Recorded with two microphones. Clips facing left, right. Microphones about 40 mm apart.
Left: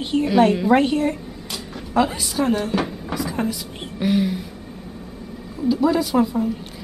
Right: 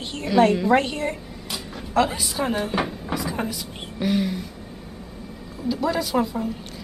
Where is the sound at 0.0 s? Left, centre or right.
Centre.